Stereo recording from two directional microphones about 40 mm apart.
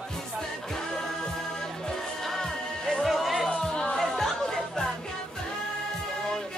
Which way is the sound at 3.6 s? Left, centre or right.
Centre.